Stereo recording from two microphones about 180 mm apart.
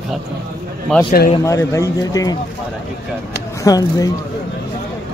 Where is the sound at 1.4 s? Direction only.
15° left (ahead or behind).